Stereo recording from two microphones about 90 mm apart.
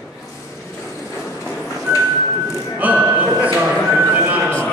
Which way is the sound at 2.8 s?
15° right (ahead or behind).